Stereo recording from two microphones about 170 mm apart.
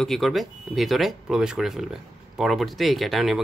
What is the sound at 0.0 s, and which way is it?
Speech, centre (ahead or behind).